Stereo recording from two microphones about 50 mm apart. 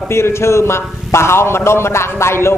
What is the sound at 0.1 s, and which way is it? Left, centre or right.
A man's voice, left.